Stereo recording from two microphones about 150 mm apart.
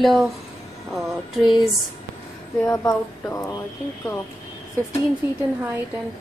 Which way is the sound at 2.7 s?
20° left (ahead or behind).